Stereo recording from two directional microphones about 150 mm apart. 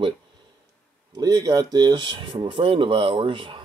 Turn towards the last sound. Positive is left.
turn(degrees=-35)  # may be behind; listen again after turning